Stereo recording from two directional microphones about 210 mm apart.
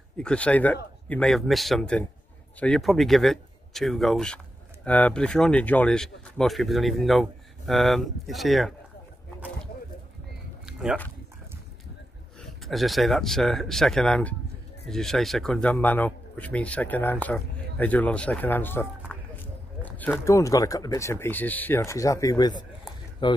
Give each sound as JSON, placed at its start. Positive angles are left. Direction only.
{"t": 0.2, "sound": "speech", "side_deg": 5}
{"t": 10.6, "sound": "a sound", "side_deg": -5}
{"t": 12.4, "sound": "speech", "side_deg": 0}